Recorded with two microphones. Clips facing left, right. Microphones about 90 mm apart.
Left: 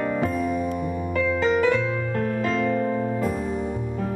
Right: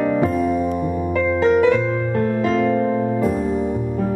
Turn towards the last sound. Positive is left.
turn(degrees=-20)  # may be behind; listen again after turning